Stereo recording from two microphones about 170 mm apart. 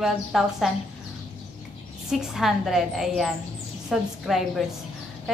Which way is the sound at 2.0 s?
Centre (ahead or behind).